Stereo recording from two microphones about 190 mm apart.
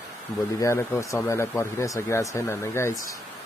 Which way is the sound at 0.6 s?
15° left (ahead or behind).